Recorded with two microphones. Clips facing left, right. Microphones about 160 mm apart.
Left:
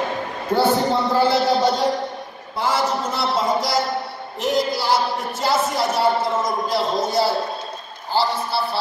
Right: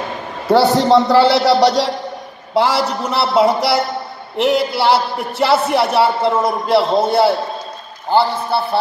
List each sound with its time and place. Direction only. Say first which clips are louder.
0.5 s a man's voice: right 7 dB; 80° right; by 8.6 s 55° right (ahead or behind)